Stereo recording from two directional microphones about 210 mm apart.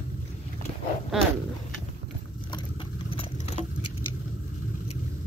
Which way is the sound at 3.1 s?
30° left (ahead or behind).